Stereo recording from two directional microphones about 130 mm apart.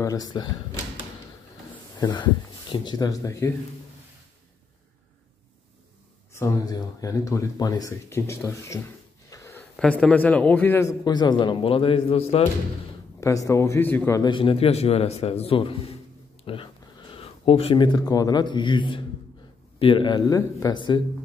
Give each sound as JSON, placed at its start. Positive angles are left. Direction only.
{"t": 0.0, "sound": "a man's voice", "side_deg": 30}
{"t": 2.0, "sound": "speech", "side_deg": 35}
{"t": 6.3, "sound": "a man's voice", "side_deg": 25}
{"t": 9.3, "sound": "a sound", "side_deg": 20}
{"t": 9.8, "sound": "a man's voice", "side_deg": 5}
{"t": 13.2, "sound": "a man's voice", "side_deg": 25}
{"t": 14.2, "sound": "a man's voice", "side_deg": 40}